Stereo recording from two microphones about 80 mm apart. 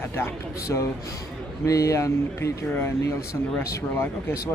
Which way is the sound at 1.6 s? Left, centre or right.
Left.